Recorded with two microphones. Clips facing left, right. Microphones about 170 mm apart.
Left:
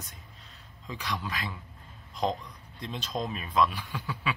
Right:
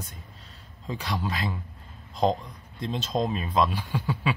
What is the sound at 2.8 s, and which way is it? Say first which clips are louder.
Speech: right 6 dB; 30° right (ahead or behind).